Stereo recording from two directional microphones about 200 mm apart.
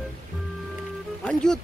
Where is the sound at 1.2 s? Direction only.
5° left (ahead or behind).